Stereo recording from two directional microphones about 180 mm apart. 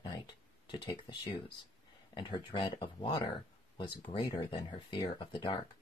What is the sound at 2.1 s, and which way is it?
Speech, 25° left (ahead or behind).